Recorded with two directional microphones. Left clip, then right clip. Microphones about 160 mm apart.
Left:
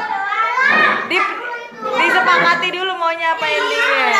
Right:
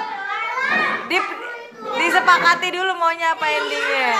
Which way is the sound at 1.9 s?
45° right (ahead or behind).